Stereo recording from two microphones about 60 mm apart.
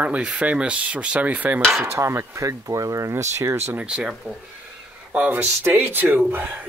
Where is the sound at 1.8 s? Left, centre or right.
Right.